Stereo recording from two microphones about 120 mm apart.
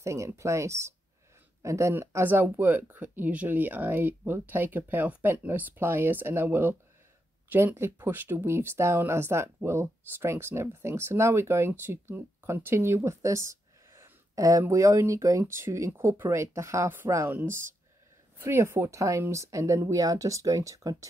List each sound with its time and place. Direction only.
0.0 s speech: 25° right (ahead or behind)